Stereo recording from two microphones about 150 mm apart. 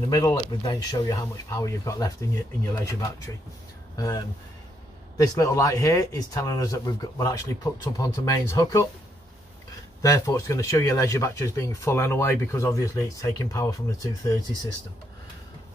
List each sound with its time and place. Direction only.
0.1 s speech: 25° left (ahead or behind)
10.0 s speech: 20° left (ahead or behind)